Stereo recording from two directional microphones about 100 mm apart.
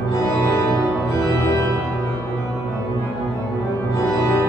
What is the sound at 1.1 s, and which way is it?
Music, 30° left (ahead or behind).